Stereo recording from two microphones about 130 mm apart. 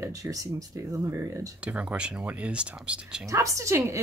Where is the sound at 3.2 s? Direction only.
25° right (ahead or behind).